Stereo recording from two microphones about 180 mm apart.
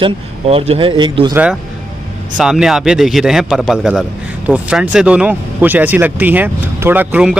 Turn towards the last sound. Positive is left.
turn(degrees=-5)  # may be behind; listen again after turning